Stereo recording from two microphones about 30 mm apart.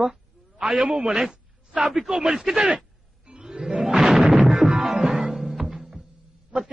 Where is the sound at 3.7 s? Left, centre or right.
Centre.